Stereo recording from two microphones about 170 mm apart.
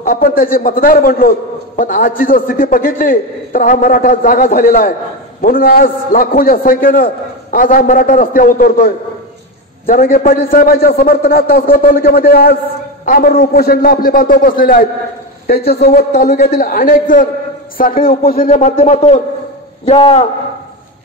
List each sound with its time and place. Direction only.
0.0 s a man's voice: 60° left (ahead or behind)
16.2 s a man's voice: 50° left (ahead or behind)
18.5 s a man's voice: 40° left (ahead or behind)